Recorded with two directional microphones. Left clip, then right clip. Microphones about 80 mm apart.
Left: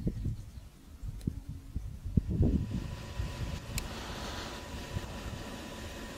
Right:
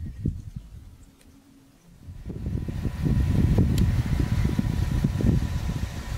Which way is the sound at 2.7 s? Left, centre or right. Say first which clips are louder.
Right 11 dB; right.